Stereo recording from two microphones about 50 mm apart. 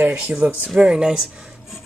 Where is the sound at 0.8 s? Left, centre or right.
Centre.